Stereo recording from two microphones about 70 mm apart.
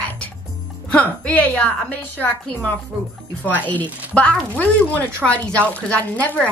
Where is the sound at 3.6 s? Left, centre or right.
Centre.